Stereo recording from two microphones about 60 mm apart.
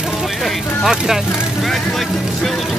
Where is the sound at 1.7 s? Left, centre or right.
Centre.